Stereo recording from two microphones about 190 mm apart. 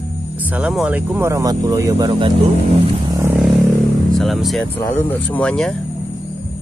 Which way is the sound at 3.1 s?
15° right (ahead or behind).